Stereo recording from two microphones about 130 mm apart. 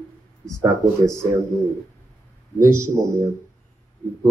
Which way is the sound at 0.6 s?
25° right (ahead or behind).